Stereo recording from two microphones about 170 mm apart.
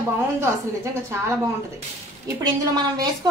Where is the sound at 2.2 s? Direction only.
20° right (ahead or behind).